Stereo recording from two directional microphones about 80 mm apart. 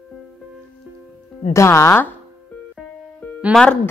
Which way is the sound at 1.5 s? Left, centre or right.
Left.